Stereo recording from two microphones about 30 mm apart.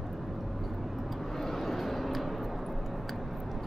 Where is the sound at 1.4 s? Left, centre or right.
Centre.